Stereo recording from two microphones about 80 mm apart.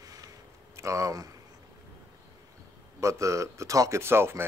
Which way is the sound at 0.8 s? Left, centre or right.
Right.